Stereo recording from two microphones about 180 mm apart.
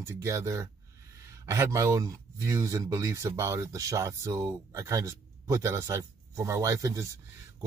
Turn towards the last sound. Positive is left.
turn(degrees=-20)  # may be behind; listen again after turning